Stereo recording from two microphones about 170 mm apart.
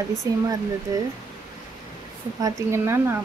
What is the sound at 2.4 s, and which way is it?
Speech, 20° right (ahead or behind).